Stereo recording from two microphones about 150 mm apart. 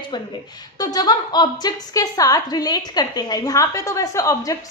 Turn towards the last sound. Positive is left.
turn(degrees=25)  # may be behind; listen again after turning